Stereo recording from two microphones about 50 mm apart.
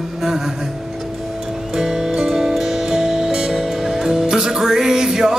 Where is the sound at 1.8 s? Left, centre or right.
Centre.